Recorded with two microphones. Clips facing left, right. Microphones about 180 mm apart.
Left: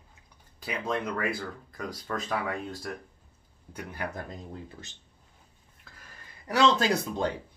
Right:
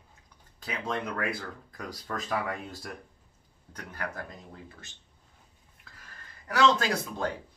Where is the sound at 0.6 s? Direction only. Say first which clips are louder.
Left 2 dB; 5° left (ahead or behind).